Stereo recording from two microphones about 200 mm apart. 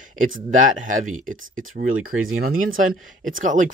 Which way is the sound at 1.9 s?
90° right.